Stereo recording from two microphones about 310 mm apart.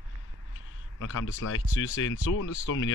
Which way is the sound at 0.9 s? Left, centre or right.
Left.